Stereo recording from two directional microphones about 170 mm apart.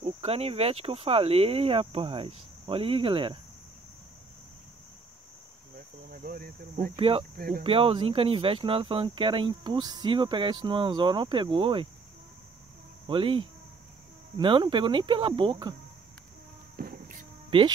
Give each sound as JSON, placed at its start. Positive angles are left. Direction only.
{"t": 0.0, "sound": "speech", "side_deg": -35}
{"t": 6.0, "sound": "speech", "side_deg": -55}
{"t": 7.0, "sound": "speech", "side_deg": -35}
{"t": 7.3, "sound": "speech", "side_deg": -60}
{"t": 7.6, "sound": "speech", "side_deg": -30}
{"t": 13.0, "sound": "cricket", "side_deg": -30}
{"t": 14.3, "sound": "speech", "side_deg": -25}
{"t": 16.7, "sound": "a sound", "side_deg": -55}
{"t": 17.5, "sound": "speech", "side_deg": -30}